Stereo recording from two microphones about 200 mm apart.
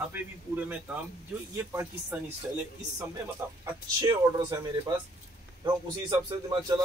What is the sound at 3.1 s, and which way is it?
Speech, 20° right (ahead or behind).